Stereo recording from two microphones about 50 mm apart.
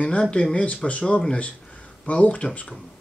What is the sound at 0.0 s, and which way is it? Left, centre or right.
Speech, left.